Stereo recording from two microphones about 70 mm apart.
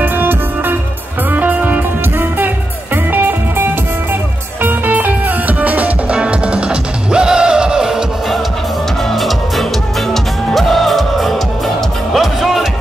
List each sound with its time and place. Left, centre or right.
0.0 s music: right; by 12.6 s centre